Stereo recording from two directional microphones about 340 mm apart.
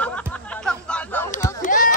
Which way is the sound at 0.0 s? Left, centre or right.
Centre.